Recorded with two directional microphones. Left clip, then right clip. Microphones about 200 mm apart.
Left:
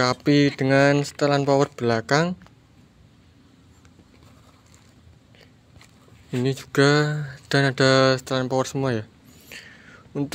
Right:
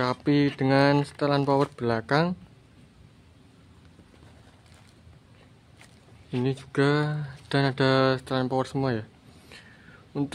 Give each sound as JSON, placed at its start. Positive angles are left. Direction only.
{"t": 0.0, "sound": "speech", "side_deg": 15}
{"t": 6.4, "sound": "speech", "side_deg": 20}